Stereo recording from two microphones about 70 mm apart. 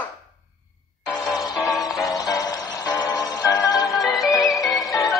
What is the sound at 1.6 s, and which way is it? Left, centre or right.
Music, left.